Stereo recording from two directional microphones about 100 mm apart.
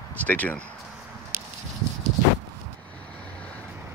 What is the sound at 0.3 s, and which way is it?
Speech, 15° left (ahead or behind).